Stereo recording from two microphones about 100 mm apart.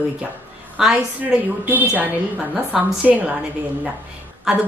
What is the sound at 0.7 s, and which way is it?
Speech, 5° right (ahead or behind).